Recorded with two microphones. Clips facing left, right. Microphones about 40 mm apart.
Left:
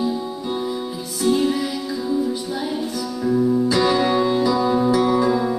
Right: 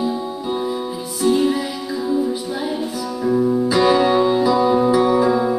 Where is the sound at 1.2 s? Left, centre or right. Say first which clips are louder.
Right 2 dB; centre.